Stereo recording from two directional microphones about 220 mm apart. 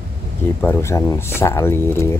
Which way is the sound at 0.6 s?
10° left (ahead or behind).